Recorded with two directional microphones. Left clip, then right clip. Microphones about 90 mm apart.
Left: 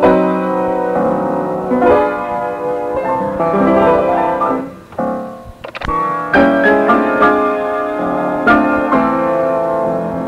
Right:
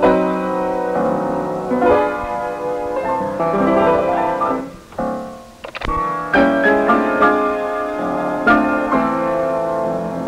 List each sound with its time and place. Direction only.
0.0 s music: 35° right (ahead or behind)
5.9 s music: 30° right (ahead or behind)